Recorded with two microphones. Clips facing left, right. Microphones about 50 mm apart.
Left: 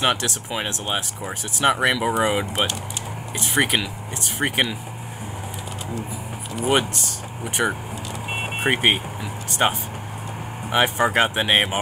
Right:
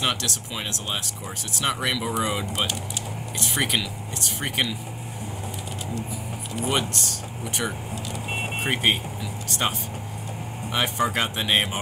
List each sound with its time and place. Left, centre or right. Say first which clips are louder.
0.0 s speech: left 5 dB; left
6.7 s speech: left 6 dB; left